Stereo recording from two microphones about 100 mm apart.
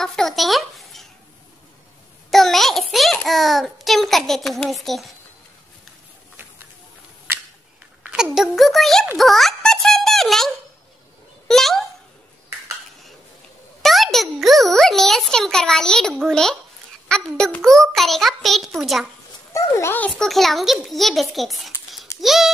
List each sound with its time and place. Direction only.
0.0 s a child's voice: 5° left (ahead or behind)
2.3 s a sound: centre (ahead or behind)
3.3 s a child's voice: centre (ahead or behind)
8.1 s a child's voice: 5° right (ahead or behind)
9.2 s music: centre (ahead or behind)
11.4 s a sound: 5° left (ahead or behind)
13.8 s a child's voice: centre (ahead or behind)
19.5 s a child's voice: 25° left (ahead or behind)
20.0 s a child's voice: 5° left (ahead or behind)